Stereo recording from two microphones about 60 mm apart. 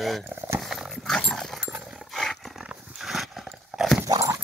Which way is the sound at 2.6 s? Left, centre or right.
Centre.